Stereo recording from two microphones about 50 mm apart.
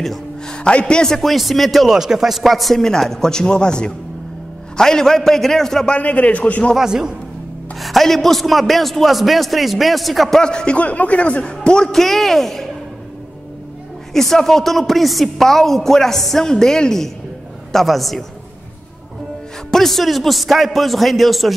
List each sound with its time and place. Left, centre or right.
0.5 s a man's voice: left
1.3 s a man's voice: centre
5.9 s a man's voice: left
6.8 s a woman's voice: centre
7.8 s speech: centre
10.4 s a man's voice: centre
14.1 s speech: centre
19.7 s speech: centre